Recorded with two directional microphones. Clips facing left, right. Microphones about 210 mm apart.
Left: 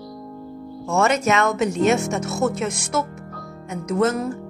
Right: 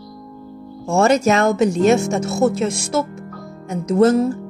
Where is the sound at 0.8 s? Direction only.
30° right (ahead or behind).